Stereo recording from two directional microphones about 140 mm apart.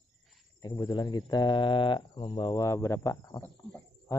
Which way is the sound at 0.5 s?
30° left (ahead or behind).